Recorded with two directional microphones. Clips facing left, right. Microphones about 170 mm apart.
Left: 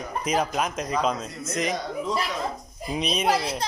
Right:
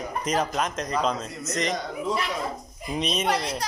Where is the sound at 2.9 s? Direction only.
Centre (ahead or behind).